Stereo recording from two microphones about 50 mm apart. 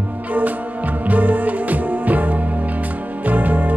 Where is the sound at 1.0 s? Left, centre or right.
Right.